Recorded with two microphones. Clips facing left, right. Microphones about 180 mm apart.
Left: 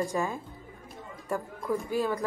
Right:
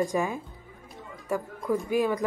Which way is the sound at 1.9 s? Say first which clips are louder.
Right 4 dB; 15° right (ahead or behind).